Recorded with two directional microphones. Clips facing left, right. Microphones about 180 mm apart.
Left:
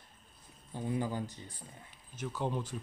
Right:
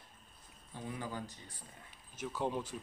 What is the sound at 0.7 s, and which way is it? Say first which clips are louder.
Speech: left 7 dB; 30° left (ahead or behind).